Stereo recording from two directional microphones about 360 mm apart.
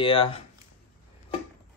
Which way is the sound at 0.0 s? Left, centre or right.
Centre.